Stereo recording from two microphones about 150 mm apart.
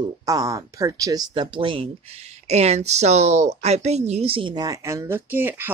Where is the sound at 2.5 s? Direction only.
45° right (ahead or behind).